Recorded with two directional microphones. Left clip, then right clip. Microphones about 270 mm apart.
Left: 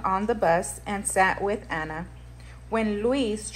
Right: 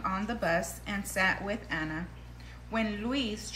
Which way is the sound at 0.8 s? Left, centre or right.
Centre.